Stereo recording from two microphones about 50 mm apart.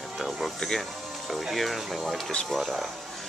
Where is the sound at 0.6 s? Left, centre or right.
Centre.